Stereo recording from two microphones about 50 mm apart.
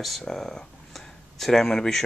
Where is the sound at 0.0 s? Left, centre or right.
Centre.